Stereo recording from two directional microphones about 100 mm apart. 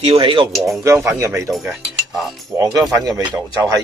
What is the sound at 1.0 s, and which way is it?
Speech, 30° right (ahead or behind).